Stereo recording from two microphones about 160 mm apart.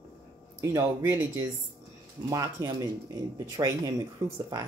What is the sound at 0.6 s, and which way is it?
Speech, 20° right (ahead or behind).